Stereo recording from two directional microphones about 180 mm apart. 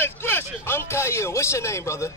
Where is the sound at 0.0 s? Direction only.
15° left (ahead or behind).